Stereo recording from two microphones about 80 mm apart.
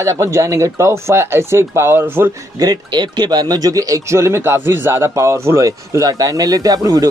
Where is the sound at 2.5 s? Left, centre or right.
Right.